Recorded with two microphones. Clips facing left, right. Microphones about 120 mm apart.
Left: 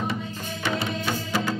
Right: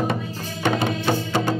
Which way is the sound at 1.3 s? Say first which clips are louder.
Right 4 dB; 25° right (ahead or behind).